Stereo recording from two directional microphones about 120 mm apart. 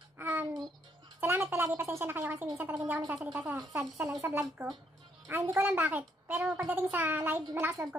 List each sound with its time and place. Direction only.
0.2 s music: 20° right (ahead or behind)
1.2 s gargling: 20° right (ahead or behind)
3.3 s a sound: 15° right (ahead or behind)
5.3 s a woman's voice: 20° right (ahead or behind)